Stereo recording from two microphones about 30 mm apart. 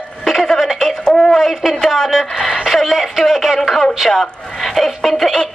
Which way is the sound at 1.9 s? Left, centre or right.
Centre.